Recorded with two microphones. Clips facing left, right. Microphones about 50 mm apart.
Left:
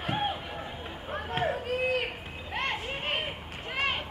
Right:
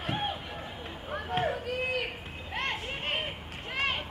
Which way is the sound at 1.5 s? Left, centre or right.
Left.